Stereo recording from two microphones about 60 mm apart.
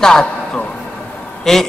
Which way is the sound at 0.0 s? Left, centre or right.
Centre.